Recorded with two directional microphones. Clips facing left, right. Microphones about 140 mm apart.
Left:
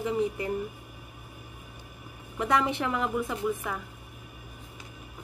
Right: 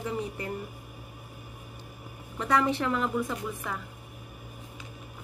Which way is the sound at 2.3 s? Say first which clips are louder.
Even; 15° left (ahead or behind).